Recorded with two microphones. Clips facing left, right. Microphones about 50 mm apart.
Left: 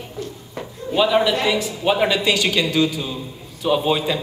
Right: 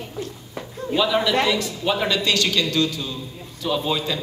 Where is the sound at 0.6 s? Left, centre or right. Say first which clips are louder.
Left 2 dB; centre.